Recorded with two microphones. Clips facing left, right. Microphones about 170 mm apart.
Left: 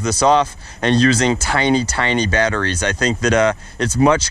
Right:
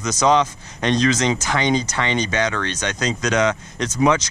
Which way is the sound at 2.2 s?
35° left (ahead or behind).